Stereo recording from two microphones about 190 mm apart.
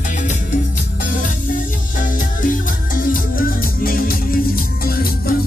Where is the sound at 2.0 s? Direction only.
45° left (ahead or behind).